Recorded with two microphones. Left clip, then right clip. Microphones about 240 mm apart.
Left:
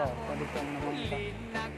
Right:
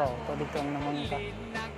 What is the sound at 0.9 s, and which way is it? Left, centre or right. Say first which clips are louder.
Music: right 2 dB; centre.